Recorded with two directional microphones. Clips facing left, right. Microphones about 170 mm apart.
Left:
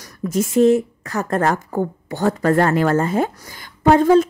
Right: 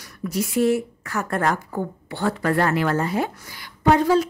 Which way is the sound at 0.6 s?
20° left (ahead or behind).